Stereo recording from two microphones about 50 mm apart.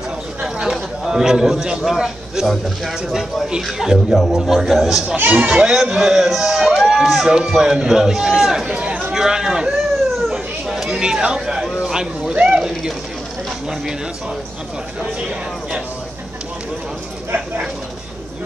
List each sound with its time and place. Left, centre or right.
0.7 s a sound: centre
1.9 s a man's voice: centre
5.1 s speech: right
5.6 s a man's voice: centre
8.6 s speech: centre
10.1 s cat: centre
10.7 s speech: centre
12.4 s a sound: centre
15.1 s speech: right